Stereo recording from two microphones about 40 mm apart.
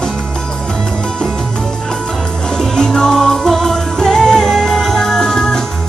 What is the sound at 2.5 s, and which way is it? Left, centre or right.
Music, centre.